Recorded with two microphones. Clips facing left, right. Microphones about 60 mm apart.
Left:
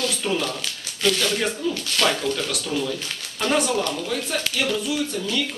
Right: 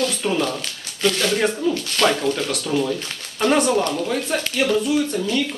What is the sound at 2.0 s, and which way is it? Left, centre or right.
Speech, right.